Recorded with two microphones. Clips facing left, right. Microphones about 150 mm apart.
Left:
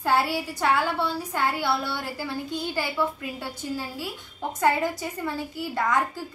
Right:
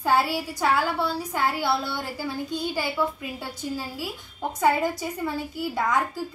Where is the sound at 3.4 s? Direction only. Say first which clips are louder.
Even; 10° right (ahead or behind).